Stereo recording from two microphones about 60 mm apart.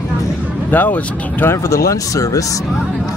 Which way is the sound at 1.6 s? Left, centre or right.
Left.